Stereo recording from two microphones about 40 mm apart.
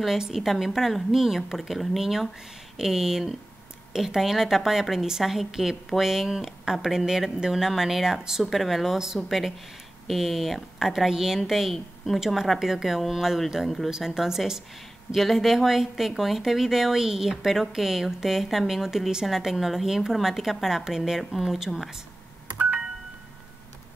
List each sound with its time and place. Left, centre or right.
0.3 s speech: centre
8.5 s speech: centre
8.9 s speech: centre
10.0 s speech: centre
13.8 s speech: centre
22.6 s telephone dialing: right